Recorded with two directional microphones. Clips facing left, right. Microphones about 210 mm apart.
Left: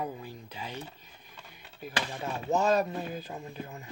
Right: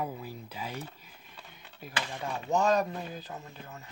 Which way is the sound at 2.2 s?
5° left (ahead or behind).